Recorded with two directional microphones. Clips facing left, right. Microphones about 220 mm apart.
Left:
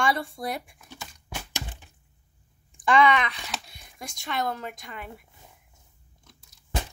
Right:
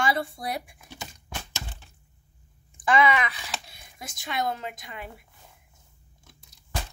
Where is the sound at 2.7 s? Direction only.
5° right (ahead or behind).